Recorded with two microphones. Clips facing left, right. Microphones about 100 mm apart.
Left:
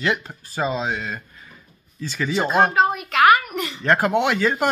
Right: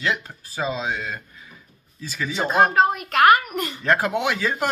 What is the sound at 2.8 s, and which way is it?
A woman's voice, 45° right (ahead or behind).